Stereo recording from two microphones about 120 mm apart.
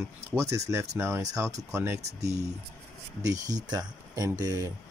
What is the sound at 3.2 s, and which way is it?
Speech, 30° right (ahead or behind).